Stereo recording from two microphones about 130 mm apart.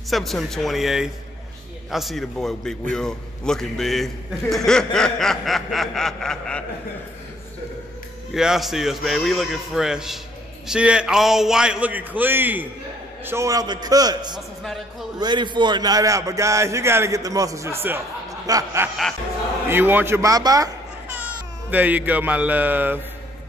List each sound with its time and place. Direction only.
0.1 s a man's voice: centre (ahead or behind)
8.3 s a man's voice: 5° right (ahead or behind); by 14.4 s 30° right (ahead or behind)
14.6 s a man's voice: centre (ahead or behind)
15.1 s a man's voice: 35° right (ahead or behind)
19.7 s a man's voice: 15° right (ahead or behind)
21.1 s speech: 10° right (ahead or behind)